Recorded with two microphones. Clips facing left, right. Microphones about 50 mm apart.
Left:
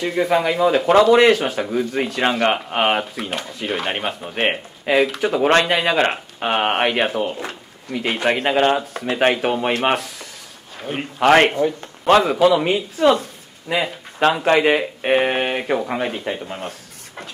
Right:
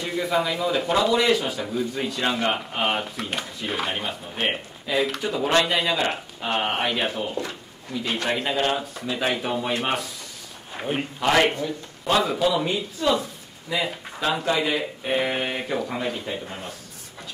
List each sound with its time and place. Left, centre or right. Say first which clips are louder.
0.0 s speech: left 6 dB; left
3.2 s speech: left 3 dB; centre
3.8 s a man's voice: left 4 dB; left
7.1 s a man's voice: left 6 dB; left
7.9 s speech: left 6 dB; left
11.1 s a man's voice: left 7 dB; left